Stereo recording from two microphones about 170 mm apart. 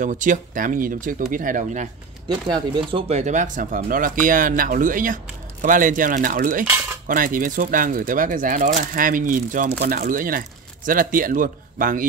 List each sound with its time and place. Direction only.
0.0 s speech: 50° right (ahead or behind)
2.4 s speech: 25° right (ahead or behind); by 6.6 s 55° right (ahead or behind)
6.6 s cutlery: 10° right (ahead or behind)
7.1 s speech: 55° right (ahead or behind)